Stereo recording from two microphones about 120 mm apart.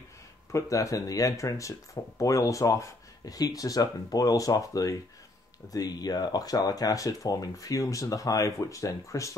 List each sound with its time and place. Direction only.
0.5 s speech: 25° left (ahead or behind)